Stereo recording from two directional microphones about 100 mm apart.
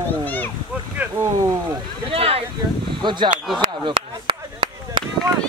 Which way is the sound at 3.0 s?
50° right (ahead or behind).